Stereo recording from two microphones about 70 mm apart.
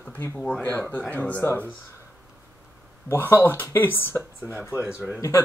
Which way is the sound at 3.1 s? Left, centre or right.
Left.